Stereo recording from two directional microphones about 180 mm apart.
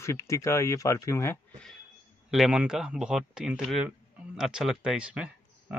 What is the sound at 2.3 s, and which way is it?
Speech, 5° right (ahead or behind).